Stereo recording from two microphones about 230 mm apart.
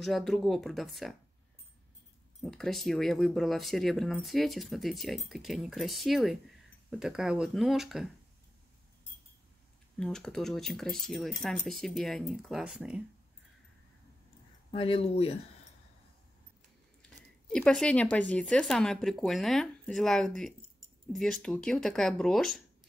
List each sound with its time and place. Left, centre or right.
0.0 s speech: centre
2.4 s speech: centre
9.9 s speech: centre
14.7 s speech: left
17.5 s speech: centre